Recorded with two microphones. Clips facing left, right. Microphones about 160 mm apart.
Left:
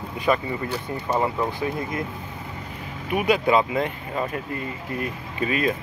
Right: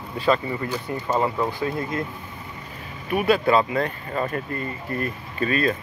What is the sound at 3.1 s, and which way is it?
Speech, 15° left (ahead or behind).